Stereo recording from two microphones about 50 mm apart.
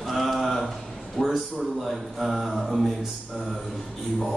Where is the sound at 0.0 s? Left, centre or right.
Centre.